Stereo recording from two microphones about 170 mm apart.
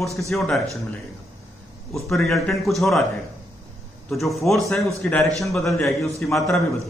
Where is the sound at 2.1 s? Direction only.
Centre (ahead or behind).